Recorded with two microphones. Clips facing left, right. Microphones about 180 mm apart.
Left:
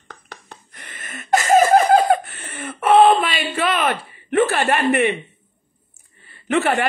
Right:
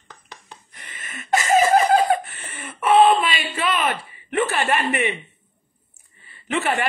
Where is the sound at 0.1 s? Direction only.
55° left (ahead or behind).